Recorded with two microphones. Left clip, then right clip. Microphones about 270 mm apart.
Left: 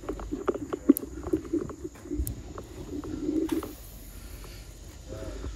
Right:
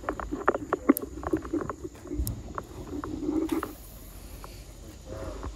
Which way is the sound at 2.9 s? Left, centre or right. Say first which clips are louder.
Even; centre.